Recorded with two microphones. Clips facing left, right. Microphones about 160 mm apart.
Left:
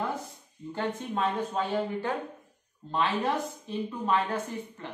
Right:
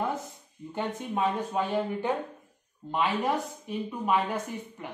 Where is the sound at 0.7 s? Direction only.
15° right (ahead or behind).